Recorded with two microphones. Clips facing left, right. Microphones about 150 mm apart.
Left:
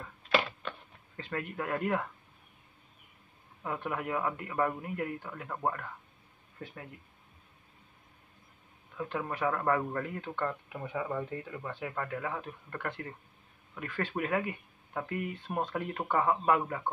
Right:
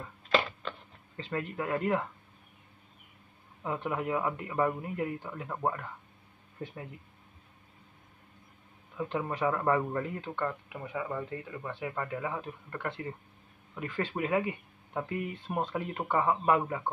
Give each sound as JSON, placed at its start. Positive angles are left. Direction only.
{"t": 0.3, "sound": "a sound", "side_deg": 10}
{"t": 1.1, "sound": "speech", "side_deg": -5}
{"t": 3.6, "sound": "a man's voice", "side_deg": -15}
{"t": 8.9, "sound": "a man's voice", "side_deg": -15}